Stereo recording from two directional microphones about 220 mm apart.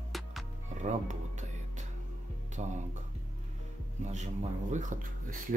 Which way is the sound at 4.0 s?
30° right (ahead or behind).